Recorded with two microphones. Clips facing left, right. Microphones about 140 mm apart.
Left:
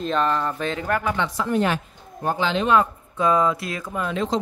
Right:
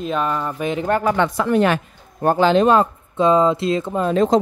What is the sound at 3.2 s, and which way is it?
Speech, 25° right (ahead or behind).